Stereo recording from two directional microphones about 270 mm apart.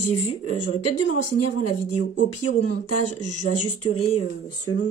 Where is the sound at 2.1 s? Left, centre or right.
Left.